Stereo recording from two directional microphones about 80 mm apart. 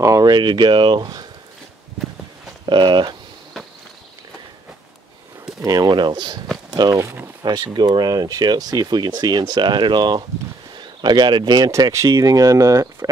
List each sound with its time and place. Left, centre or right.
0.0 s a sound: right
0.3 s speech: right
2.6 s speech: right
5.6 s speech: right
6.7 s speech: right
7.4 s speech: right
12.1 s speech: right